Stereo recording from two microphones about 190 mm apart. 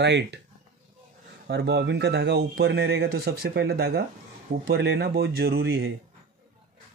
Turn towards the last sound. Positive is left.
turn(degrees=-55)  # may be behind; listen again after turning